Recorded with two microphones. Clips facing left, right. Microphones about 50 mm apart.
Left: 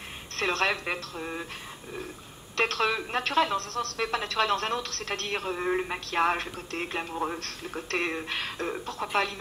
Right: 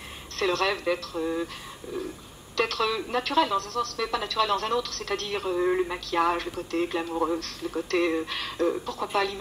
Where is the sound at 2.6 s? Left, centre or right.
Left.